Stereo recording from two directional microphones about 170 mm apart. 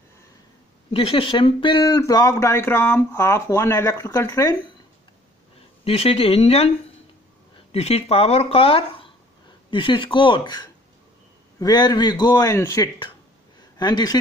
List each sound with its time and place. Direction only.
0.9 s speech: 35° left (ahead or behind)
5.9 s speech: 35° left (ahead or behind)
7.7 s speech: 35° left (ahead or behind)